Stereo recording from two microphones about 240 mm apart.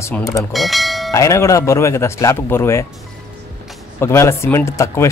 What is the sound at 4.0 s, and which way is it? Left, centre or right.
Speech, centre.